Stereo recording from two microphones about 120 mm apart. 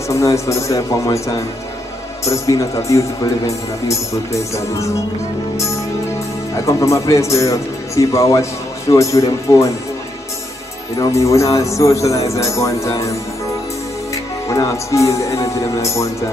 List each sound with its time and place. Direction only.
0.1 s speech: 25° left (ahead or behind)
6.5 s speech: 25° left (ahead or behind)
11.0 s speech: 25° left (ahead or behind)
14.1 s speech: 25° left (ahead or behind)